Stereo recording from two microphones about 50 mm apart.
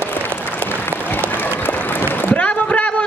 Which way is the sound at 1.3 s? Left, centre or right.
Left.